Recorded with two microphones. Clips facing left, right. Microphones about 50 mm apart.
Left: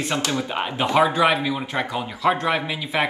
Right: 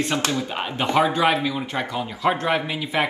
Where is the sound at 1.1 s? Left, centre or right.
Centre.